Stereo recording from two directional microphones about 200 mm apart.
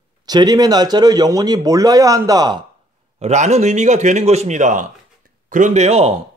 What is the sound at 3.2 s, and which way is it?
Speech, 35° right (ahead or behind).